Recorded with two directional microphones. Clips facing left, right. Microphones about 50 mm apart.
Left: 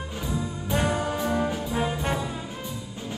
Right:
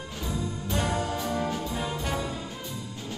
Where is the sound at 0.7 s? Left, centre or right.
Centre.